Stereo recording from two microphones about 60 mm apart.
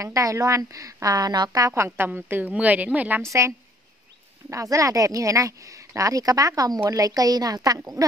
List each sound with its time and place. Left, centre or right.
0.0 s speech: right
1.0 s speech: right
2.0 s a woman's voice: right
3.2 s a woman's voice: right